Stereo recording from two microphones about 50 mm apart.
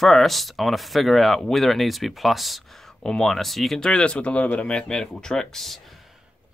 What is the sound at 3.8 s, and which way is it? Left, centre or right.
Speech, centre.